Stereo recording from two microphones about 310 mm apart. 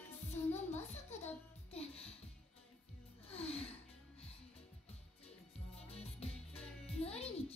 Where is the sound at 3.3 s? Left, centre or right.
Centre.